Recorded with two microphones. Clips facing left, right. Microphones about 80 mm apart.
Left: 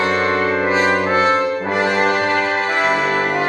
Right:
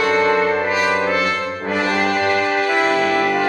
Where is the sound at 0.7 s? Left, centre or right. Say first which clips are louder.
Left 2 dB; left.